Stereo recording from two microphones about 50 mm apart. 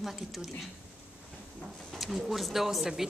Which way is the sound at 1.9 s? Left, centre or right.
Centre.